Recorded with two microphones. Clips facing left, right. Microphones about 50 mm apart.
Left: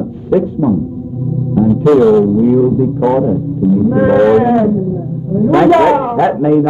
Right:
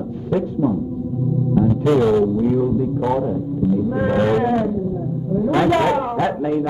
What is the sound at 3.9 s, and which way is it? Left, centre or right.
A man's voice, left.